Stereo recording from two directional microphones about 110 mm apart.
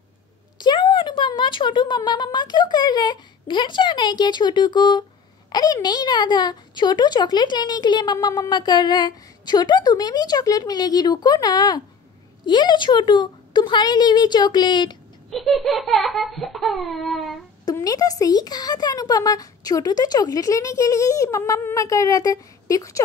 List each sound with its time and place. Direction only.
0.6 s a woman's voice: 45° left (ahead or behind)
15.3 s a sound: centre (ahead or behind)
17.8 s a woman's voice: 35° left (ahead or behind)